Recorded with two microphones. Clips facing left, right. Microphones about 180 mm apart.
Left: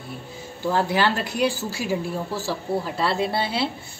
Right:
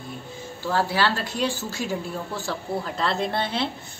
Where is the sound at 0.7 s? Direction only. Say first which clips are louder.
Left 2 dB; 15° left (ahead or behind).